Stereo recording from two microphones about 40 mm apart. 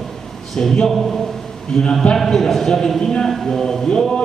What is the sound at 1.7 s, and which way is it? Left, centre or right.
A man's voice, centre.